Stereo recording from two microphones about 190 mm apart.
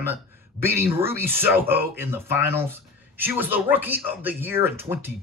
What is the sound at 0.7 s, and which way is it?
Speech, 15° right (ahead or behind).